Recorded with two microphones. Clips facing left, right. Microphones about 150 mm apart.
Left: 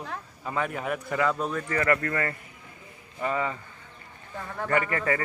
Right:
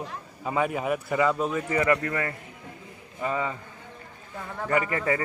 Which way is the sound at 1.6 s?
15° right (ahead or behind).